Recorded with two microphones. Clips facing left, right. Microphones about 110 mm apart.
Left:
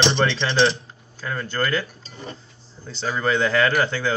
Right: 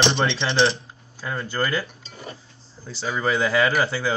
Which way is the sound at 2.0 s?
35° left (ahead or behind).